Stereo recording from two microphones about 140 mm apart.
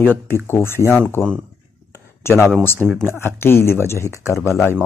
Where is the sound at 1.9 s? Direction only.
15° left (ahead or behind).